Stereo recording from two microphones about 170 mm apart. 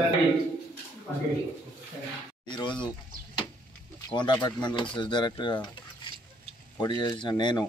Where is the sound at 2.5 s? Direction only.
25° left (ahead or behind).